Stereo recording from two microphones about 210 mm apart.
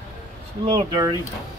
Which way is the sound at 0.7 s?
20° right (ahead or behind).